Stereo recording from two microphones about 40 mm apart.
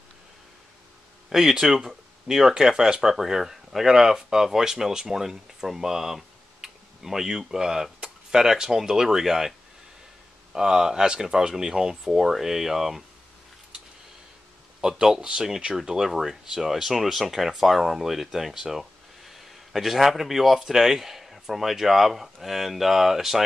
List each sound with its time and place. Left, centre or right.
1.3 s speech: centre
10.5 s speech: centre
14.8 s speech: centre